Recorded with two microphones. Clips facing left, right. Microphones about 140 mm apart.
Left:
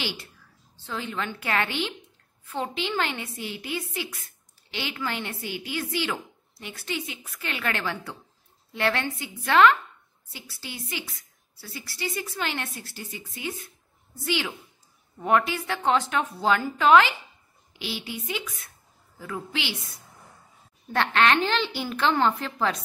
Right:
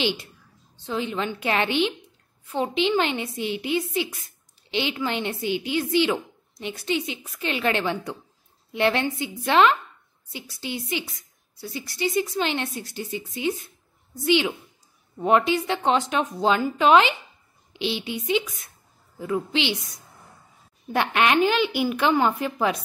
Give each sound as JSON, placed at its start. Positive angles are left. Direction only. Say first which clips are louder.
{"t": 0.0, "sound": "a woman's voice", "louder": "right 8 dB", "side_deg": -20}